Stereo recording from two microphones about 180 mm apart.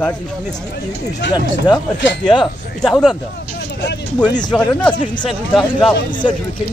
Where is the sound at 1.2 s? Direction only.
80° left.